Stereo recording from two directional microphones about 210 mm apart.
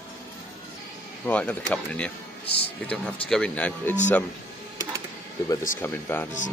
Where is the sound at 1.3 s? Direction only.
5° left (ahead or behind).